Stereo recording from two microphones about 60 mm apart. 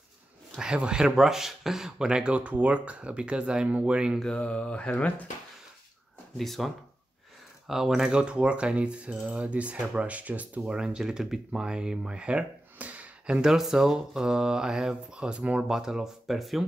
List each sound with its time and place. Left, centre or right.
0.6 s speech: centre
4.4 s speech: centre
6.3 s speech: centre; by 10.6 s right
10.6 s speech: centre
13.4 s speech: centre
15.7 s speech: centre